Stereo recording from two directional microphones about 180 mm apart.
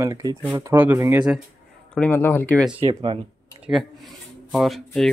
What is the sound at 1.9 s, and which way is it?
Speech, 10° left (ahead or behind).